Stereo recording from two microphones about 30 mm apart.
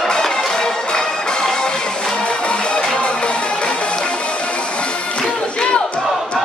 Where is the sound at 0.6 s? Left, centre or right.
Left.